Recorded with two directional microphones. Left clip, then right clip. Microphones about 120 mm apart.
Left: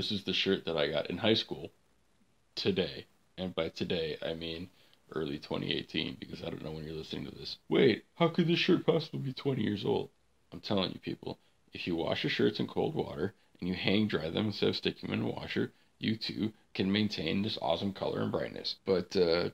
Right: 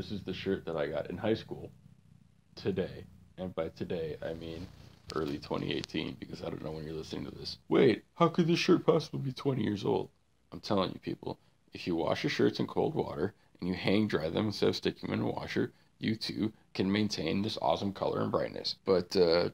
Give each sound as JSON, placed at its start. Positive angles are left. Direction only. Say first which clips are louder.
{"t": 0.0, "sound": "speech", "louder": "left 6 dB", "side_deg": -15}
{"t": 5.1, "sound": "speech", "louder": "right 1 dB", "side_deg": -25}